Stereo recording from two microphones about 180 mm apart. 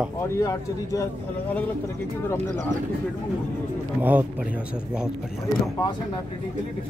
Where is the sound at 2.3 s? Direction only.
15° left (ahead or behind).